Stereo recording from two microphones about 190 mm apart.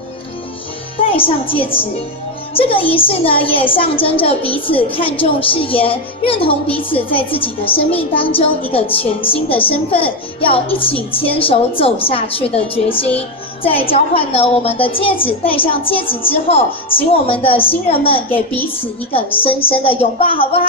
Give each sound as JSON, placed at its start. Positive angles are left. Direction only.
{"t": 0.9, "sound": "a woman's voice", "side_deg": 30}
{"t": 10.9, "sound": "a child's voice", "side_deg": 10}
{"t": 11.1, "sound": "a child's voice", "side_deg": 30}
{"t": 18.3, "sound": "a child's voice", "side_deg": 10}
{"t": 18.8, "sound": "a child's voice", "side_deg": 30}